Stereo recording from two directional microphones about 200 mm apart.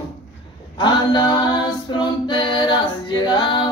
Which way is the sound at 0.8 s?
20° left (ahead or behind).